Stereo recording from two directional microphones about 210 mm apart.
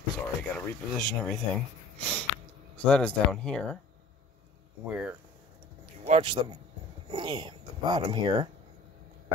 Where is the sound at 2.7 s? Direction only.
5° left (ahead or behind).